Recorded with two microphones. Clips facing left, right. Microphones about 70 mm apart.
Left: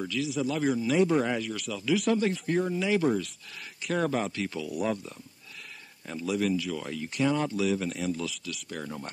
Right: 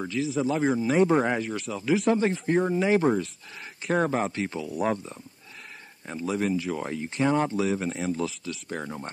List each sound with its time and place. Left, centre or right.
0.0 s speech: right